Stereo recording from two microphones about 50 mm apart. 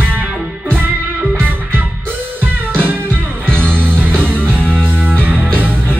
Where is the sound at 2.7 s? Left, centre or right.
Right.